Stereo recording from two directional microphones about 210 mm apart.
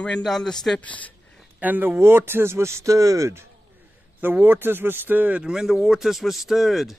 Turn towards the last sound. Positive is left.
turn(degrees=0)  # may be behind; listen again after turning